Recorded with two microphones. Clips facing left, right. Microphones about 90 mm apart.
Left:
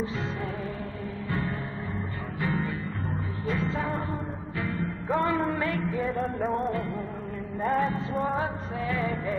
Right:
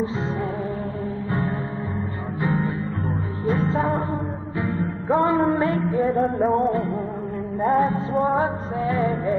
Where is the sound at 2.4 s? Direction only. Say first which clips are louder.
Right 6 dB; 30° right (ahead or behind).